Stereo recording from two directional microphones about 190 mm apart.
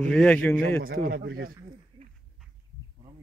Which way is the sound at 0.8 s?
50° right (ahead or behind).